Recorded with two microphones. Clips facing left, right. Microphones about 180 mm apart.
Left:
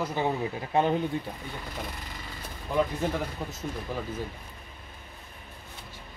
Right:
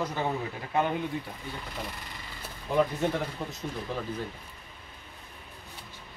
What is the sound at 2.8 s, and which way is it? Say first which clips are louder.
Speech: right 1 dB; centre (ahead or behind).